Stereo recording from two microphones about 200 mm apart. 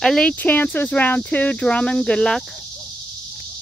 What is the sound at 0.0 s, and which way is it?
Speech, 5° left (ahead or behind).